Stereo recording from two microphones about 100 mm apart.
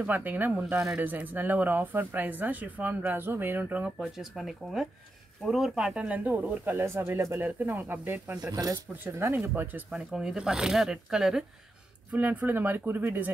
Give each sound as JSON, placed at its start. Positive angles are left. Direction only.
{"t": 0.0, "sound": "speech", "side_deg": -15}
{"t": 8.5, "sound": "speech", "side_deg": -40}
{"t": 9.0, "sound": "speech", "side_deg": -25}
{"t": 9.9, "sound": "speech", "side_deg": -5}
{"t": 12.1, "sound": "speech", "side_deg": -15}